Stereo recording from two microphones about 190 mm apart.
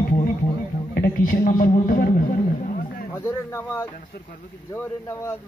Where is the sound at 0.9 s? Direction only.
50° left (ahead or behind).